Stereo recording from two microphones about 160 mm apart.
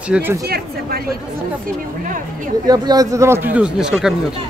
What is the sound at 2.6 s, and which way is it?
Speech, 25° right (ahead or behind).